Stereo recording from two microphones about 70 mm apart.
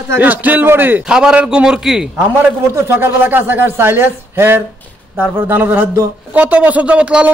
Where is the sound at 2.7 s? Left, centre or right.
Right.